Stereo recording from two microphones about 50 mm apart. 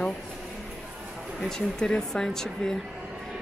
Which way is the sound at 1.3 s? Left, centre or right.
Centre.